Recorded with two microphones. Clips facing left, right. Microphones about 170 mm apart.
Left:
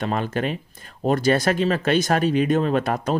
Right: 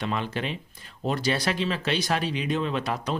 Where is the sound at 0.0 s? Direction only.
45° left (ahead or behind).